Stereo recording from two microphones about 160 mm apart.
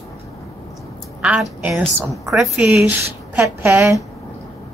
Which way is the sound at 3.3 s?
15° right (ahead or behind).